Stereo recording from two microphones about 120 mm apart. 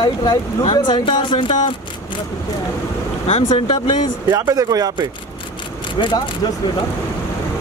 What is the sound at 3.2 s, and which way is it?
Speech, 65° left (ahead or behind).